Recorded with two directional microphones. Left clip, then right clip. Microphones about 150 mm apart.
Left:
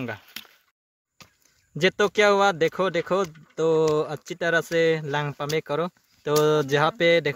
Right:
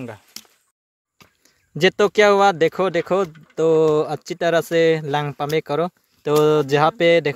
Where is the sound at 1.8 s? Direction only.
30° right (ahead or behind).